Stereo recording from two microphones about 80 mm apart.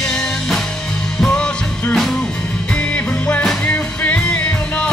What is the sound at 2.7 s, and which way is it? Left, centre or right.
Music, centre.